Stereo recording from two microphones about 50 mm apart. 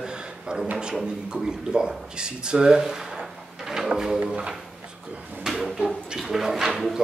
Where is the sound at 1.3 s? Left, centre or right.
Centre.